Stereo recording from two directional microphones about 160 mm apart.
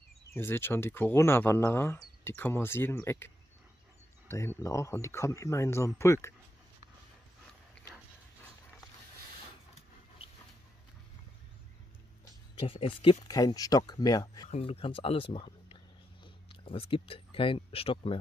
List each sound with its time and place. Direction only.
0.3 s speech: 15° left (ahead or behind)
4.3 s speech: 15° left (ahead or behind)
12.5 s speech: 35° left (ahead or behind)
14.5 s speech: 35° left (ahead or behind)